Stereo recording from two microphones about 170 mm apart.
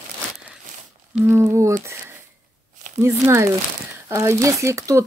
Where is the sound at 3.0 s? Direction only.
15° right (ahead or behind).